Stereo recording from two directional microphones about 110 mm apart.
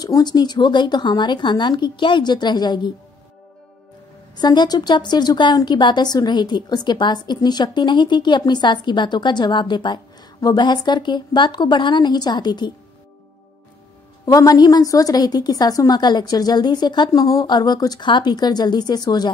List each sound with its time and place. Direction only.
0.0 s speech: 40° left (ahead or behind)
4.4 s speech: 40° left (ahead or behind)
14.2 s a woman's voice: 35° left (ahead or behind)